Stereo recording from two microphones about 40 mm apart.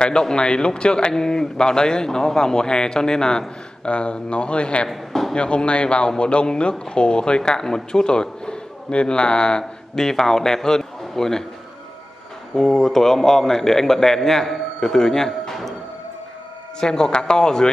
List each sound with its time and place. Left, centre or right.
0.0 s a man's voice: centre
4.8 s speech: centre
5.3 s a man's voice: left
9.9 s a man's voice: centre
12.5 s a man's voice: centre
16.8 s a man's voice: centre